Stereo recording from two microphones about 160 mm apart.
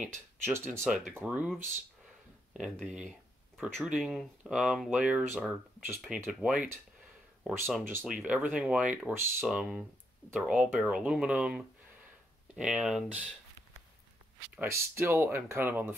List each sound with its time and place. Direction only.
0.0 s speech: 5° right (ahead or behind)
5.9 s speech: centre (ahead or behind)
7.4 s speech: 15° right (ahead or behind)
8.0 s speech: centre (ahead or behind)
9.5 s speech: 5° right (ahead or behind)
14.5 s speech: 15° right (ahead or behind)